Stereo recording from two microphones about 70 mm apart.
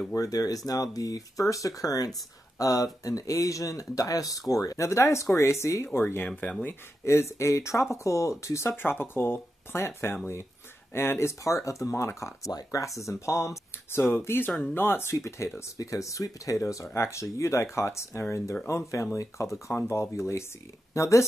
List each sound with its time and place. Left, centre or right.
0.1 s speech: left
5.9 s speech: left
8.7 s speech: left